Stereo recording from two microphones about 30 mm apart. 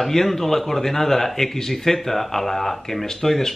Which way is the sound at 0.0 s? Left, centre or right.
Centre.